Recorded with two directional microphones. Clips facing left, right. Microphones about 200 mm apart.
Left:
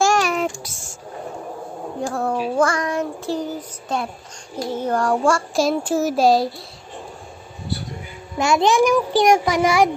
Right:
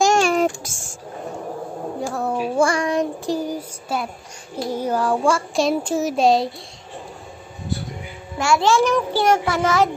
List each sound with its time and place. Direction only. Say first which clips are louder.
0.0 s a sound: right 2 dB; 25° right (ahead or behind)
0.7 s speech: right 1 dB; 90° right
2.0 s child singing: left 1 dB; centre (ahead or behind)
4.6 s a child's voice: even; 10° right (ahead or behind)
8.4 s a child's voice: left 1 dB; 20° left (ahead or behind)
9.1 s child singing: left 3 dB; 15° left (ahead or behind)